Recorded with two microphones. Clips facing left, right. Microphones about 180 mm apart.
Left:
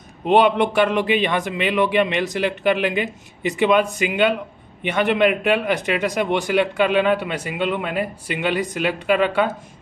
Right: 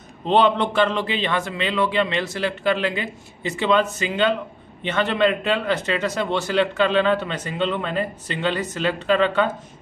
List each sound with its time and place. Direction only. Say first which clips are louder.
0.2 s a man's voice: left 2 dB; 10° left (ahead or behind)